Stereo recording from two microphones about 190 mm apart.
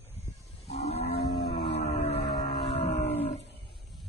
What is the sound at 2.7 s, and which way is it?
Livestock, 65° left (ahead or behind).